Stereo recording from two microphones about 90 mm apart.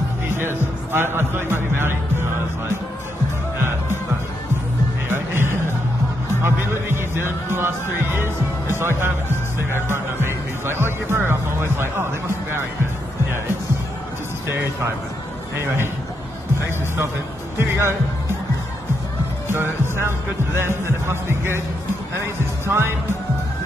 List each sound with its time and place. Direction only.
0.3 s music: 25° right (ahead or behind)
1.1 s speech: 25° right (ahead or behind)
5.1 s music: 25° right (ahead or behind)
9.8 s speech: 25° right (ahead or behind)
17.6 s speech: 30° right (ahead or behind)
19.4 s speech: 25° right (ahead or behind)